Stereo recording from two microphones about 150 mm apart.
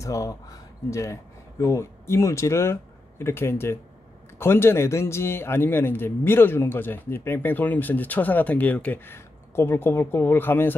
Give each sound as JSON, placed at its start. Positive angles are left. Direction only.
{"t": 0.0, "sound": "a man's voice", "side_deg": 20}